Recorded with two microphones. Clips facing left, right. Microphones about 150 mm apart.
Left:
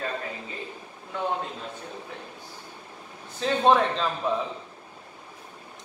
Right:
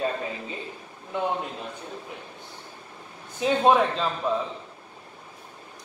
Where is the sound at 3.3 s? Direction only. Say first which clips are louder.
Right 1 dB; 10° right (ahead or behind).